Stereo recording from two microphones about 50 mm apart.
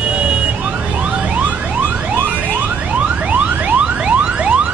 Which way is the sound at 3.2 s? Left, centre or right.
Right.